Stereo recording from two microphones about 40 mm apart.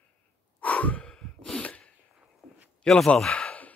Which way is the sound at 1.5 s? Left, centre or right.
Left.